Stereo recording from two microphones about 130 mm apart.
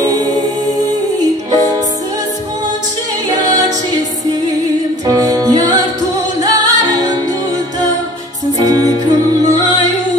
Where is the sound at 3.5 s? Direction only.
30° right (ahead or behind).